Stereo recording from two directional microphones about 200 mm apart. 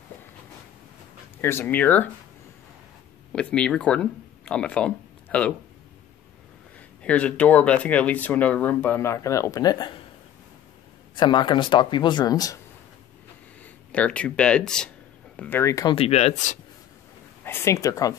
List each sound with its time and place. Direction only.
1.4 s speech: 10° left (ahead or behind)
3.3 s speech: 5° left (ahead or behind)
7.0 s speech: 5° left (ahead or behind); by 10.0 s 25° left (ahead or behind)
11.1 s speech: 25° left (ahead or behind)
13.9 s speech: 5° left (ahead or behind); by 16.5 s 35° left (ahead or behind)
17.5 s speech: 15° left (ahead or behind)